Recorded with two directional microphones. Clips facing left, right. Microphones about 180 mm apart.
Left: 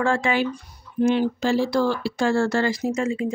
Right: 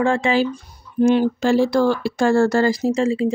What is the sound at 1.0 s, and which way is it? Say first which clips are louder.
Speech: right 4 dB; 45° right (ahead or behind).